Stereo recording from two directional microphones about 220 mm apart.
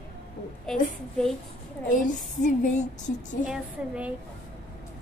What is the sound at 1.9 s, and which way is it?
A woman's voice, 35° left (ahead or behind).